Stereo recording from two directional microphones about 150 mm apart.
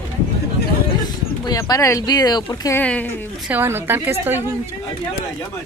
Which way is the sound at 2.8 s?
10° left (ahead or behind).